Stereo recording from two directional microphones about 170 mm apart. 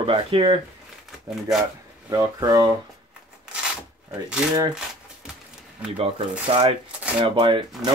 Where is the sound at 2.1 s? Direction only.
20° right (ahead or behind).